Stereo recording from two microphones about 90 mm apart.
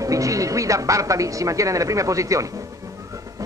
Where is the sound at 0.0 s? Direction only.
40° right (ahead or behind).